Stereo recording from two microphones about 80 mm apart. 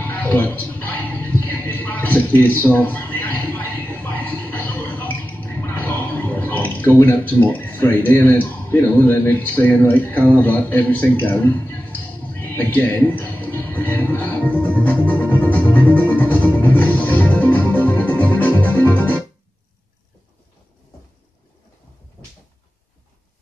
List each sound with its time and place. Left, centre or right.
0.0 s music: left